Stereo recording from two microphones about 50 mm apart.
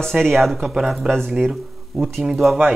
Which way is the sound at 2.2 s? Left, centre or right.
Centre.